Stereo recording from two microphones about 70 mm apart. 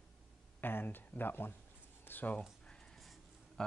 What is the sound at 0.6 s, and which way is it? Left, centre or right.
Speech, left.